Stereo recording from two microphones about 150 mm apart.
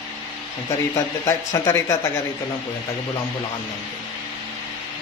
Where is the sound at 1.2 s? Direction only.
20° left (ahead or behind).